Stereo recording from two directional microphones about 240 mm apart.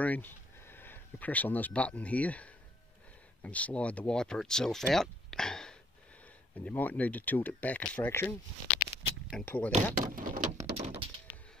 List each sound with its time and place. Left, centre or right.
0.0 s speech: centre
9.9 s door: right
10.7 s thunk: right